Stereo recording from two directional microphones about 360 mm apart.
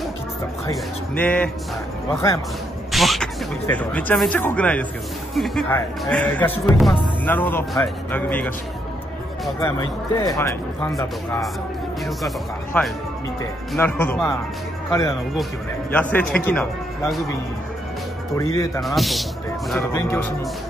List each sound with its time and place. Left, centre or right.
0.7 s speech: centre
2.9 s speech: centre
12.7 s speech: centre
18.4 s speech: centre